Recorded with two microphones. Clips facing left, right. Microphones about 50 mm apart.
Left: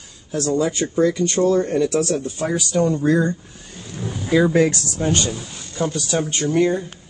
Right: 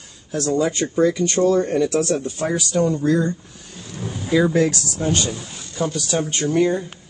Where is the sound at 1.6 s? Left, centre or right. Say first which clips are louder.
Even; centre.